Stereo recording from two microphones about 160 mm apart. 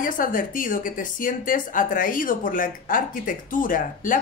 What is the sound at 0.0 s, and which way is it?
Speech, 60° left (ahead or behind).